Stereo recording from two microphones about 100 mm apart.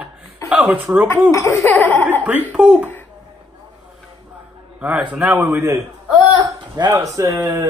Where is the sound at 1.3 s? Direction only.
20° left (ahead or behind).